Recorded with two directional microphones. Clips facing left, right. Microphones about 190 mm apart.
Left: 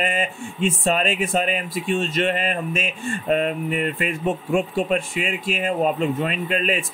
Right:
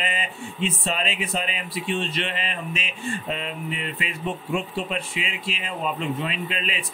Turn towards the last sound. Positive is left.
turn(degrees=45)  # may be behind; listen again after turning